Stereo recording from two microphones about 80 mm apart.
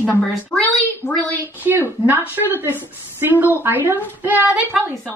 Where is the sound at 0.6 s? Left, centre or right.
Centre.